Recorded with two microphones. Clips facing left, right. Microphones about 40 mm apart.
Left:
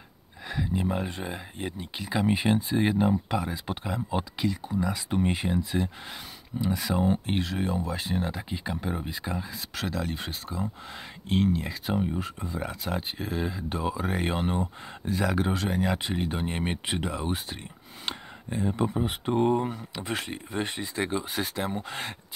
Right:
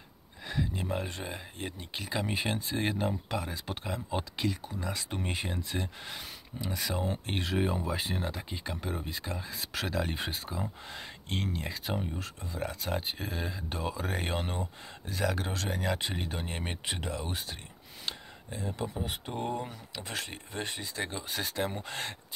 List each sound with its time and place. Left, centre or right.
0.5 s speech: centre
12.1 s speech: centre